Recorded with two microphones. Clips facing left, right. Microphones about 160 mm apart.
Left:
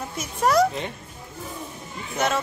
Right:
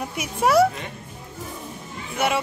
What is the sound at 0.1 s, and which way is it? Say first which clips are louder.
Speech: right 2 dB; 10° right (ahead or behind).